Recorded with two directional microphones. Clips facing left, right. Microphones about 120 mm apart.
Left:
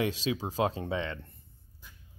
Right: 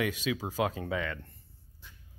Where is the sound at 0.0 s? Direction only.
30° left (ahead or behind).